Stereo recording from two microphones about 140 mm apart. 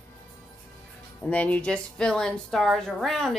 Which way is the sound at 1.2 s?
10° left (ahead or behind).